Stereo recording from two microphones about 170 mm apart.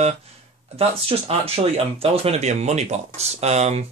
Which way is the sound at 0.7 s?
35° right (ahead or behind).